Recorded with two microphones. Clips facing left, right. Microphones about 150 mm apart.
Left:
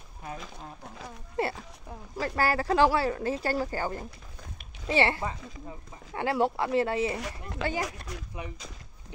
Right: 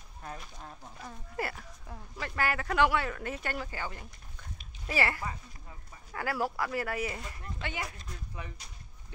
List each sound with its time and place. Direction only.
1.3 s speech: 25° left (ahead or behind)
4.8 s speech: 25° left (ahead or behind)
7.2 s speech: 80° left